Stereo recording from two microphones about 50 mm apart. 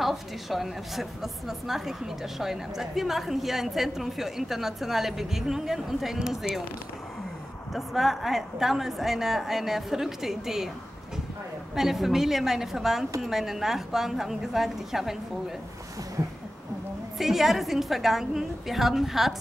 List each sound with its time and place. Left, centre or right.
0.0 s a woman's voice: centre
7.7 s a woman's voice: centre
11.7 s a woman's voice: centre
16.2 s a sound: right
17.2 s a woman's voice: centre